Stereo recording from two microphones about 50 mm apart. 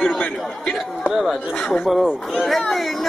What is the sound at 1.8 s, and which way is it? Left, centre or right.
Speech, centre.